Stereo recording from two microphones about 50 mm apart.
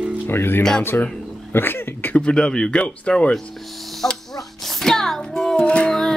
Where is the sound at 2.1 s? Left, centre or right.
Centre.